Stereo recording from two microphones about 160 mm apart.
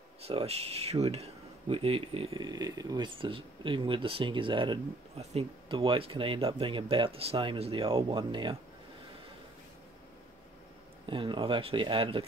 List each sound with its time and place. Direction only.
0.2 s speech: 40° right (ahead or behind)
11.1 s speech: 30° right (ahead or behind)